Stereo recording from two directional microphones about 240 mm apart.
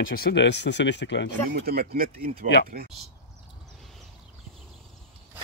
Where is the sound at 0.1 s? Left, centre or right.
Left.